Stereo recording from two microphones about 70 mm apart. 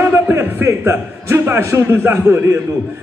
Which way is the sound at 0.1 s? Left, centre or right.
Right.